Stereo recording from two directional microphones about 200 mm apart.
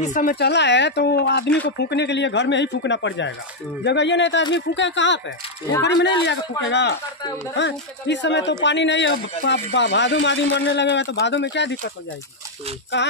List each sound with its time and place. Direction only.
0.0 s a man's voice: 40° left (ahead or behind); by 11.7 s 60° left (ahead or behind)